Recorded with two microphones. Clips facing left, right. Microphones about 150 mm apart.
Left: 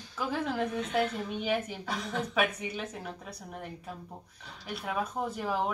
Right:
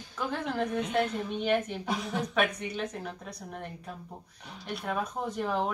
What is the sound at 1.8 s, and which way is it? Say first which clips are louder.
Speech: right 2 dB; 15° right (ahead or behind).